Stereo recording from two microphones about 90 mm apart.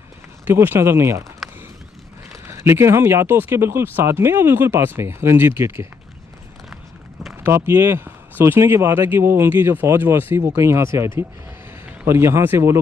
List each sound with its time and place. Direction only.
0.5 s speech: 25° right (ahead or behind)
1.4 s a sound: centre (ahead or behind)
2.4 s speech: 30° right (ahead or behind)
7.4 s speech: 25° right (ahead or behind)